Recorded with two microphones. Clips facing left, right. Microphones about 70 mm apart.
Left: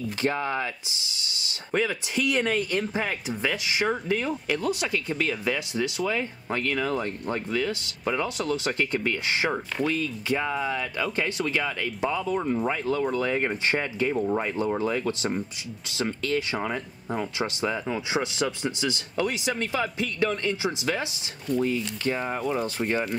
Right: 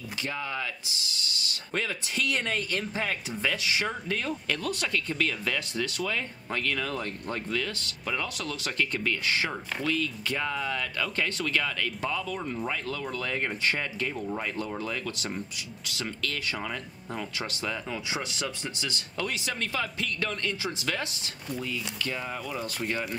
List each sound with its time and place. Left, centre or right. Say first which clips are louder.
0.2 s speech: left 7 dB; left
0.8 s speech: even; centre
12.2 s speech: left 7 dB; left
21.5 s speech: left 8 dB; left